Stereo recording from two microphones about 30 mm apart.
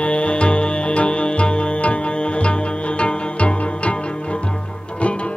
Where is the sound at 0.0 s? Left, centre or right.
Left.